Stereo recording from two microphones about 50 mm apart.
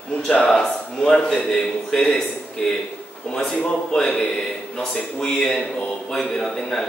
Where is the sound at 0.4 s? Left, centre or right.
Centre.